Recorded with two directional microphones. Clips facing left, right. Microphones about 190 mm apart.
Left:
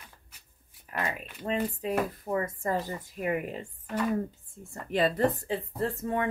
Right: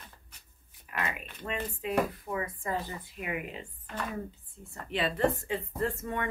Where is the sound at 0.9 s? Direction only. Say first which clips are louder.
Left 2 dB; 35° left (ahead or behind).